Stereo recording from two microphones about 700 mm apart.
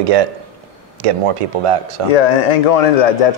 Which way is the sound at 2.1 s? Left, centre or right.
Left.